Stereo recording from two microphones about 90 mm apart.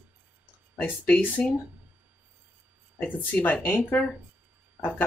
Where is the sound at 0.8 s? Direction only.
20° left (ahead or behind).